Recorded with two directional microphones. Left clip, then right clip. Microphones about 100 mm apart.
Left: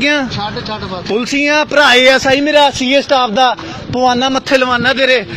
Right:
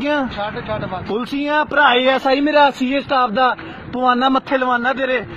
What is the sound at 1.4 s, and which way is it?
Speech, 20° right (ahead or behind).